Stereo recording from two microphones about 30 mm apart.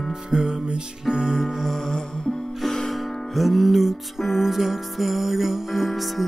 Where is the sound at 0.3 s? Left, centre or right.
Right.